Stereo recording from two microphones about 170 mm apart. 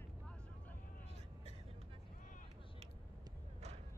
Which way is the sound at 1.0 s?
40° right (ahead or behind).